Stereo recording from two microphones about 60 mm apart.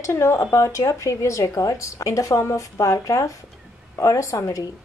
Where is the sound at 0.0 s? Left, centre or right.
Left.